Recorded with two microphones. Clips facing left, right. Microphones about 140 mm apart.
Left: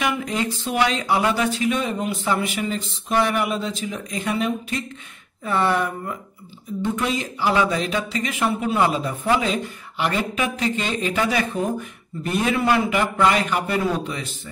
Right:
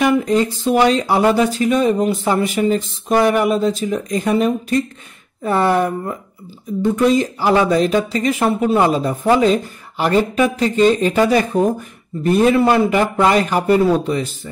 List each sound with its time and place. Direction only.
0.0 s speech: 35° right (ahead or behind)